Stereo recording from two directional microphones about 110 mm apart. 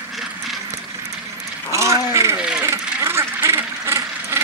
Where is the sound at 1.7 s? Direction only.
25° right (ahead or behind).